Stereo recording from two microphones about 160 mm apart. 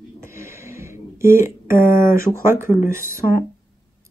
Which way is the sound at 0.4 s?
15° right (ahead or behind).